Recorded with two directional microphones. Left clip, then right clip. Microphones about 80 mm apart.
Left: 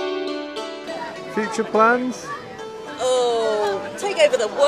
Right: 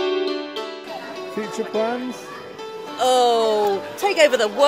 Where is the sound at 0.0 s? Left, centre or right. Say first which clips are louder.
Right 3 dB; left.